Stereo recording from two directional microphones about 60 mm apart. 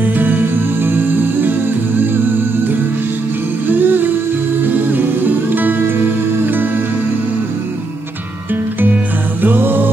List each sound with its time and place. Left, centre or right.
0.0 s music: right
3.6 s music: right
5.5 s music: right
9.4 s music: right